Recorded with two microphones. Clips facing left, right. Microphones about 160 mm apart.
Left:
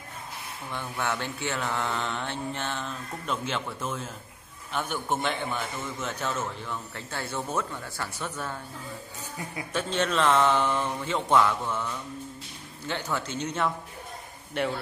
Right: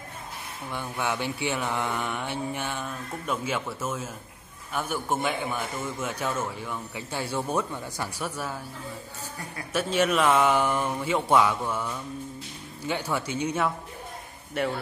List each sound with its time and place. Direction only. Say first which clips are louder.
0.7 s a man's voice: right 1 dB; 10° right (ahead or behind)
9.7 s a man's voice: right 4 dB; 10° right (ahead or behind)